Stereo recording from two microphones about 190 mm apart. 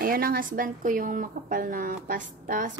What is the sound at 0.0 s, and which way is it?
Speech, 50° right (ahead or behind).